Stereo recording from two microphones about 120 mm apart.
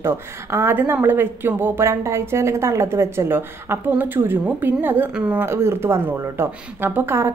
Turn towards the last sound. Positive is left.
turn(degrees=-20)  # may be behind; listen again after turning